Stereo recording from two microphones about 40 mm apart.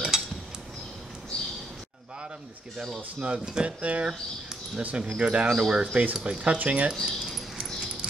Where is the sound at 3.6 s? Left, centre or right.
Right.